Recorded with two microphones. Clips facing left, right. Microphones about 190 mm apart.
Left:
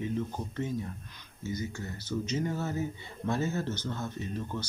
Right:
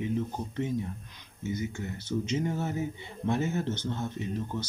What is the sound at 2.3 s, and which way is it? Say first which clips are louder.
Speech: right 1 dB; 20° right (ahead or behind).